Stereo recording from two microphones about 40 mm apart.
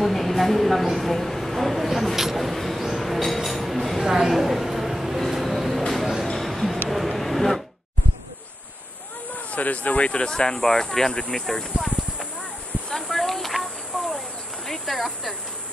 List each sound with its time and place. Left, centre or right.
0.0 s a sound: centre
9.5 s speech: left; by 11.6 s centre
11.7 s clip-clop: centre
12.9 s snake: centre
14.7 s speech: centre